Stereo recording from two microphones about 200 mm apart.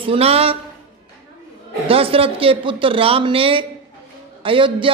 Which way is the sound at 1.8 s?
30° right (ahead or behind).